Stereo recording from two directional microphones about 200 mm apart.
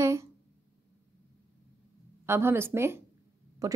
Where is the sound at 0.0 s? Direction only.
15° right (ahead or behind).